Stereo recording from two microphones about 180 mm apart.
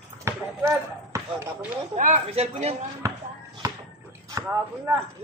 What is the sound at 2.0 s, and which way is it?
Speech, 40° right (ahead or behind).